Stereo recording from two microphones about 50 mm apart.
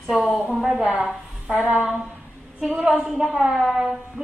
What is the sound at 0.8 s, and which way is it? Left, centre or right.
Speech, right.